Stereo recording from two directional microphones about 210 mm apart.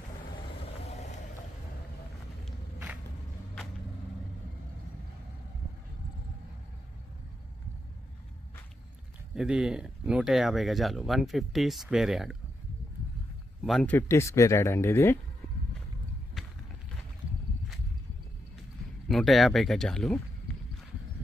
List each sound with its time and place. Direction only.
0.6 s vehicle: 30° left (ahead or behind)
9.3 s speech: 5° right (ahead or behind)
13.7 s speech: 5° left (ahead or behind)
16.4 s run: centre (ahead or behind)
19.0 s speech: centre (ahead or behind)